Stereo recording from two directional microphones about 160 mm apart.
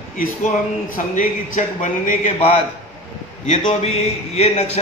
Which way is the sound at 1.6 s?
50° left (ahead or behind).